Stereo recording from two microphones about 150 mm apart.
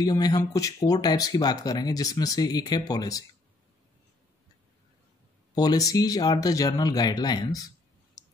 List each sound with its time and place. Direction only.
0.0 s speech: 25° left (ahead or behind)
5.5 s speech: 25° left (ahead or behind)
8.2 s clicking: 25° left (ahead or behind)